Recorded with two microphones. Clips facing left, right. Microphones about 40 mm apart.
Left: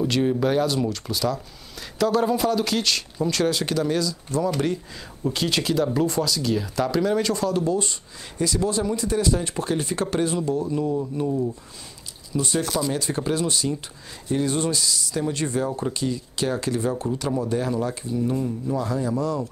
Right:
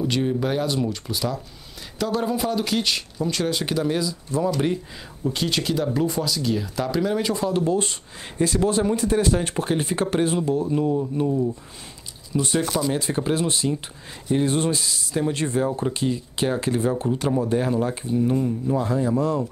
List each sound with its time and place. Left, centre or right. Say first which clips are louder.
0.1 s speech: left 2 dB; centre
5.3 s speech: left 1 dB; centre
7.4 s speech: right 1 dB; right
11.2 s speech: right 1 dB; centre
12.5 s speech: right 2 dB; right
18.8 s speech: right 2 dB; right